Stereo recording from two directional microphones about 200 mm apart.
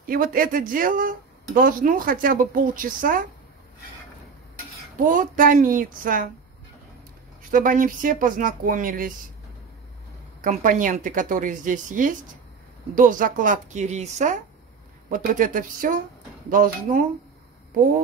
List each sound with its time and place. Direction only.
0.0 s speech: 45° right (ahead or behind)
4.9 s speech: 40° right (ahead or behind)
7.5 s speech: 40° right (ahead or behind)
10.4 s speech: 40° right (ahead or behind)